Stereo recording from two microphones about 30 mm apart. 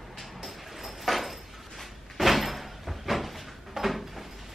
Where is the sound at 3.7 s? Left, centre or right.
Centre.